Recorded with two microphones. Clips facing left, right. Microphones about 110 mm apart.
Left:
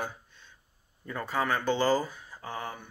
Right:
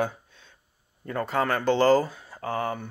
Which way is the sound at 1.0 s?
55° right (ahead or behind).